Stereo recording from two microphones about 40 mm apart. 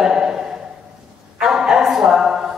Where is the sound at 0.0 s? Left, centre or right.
Centre.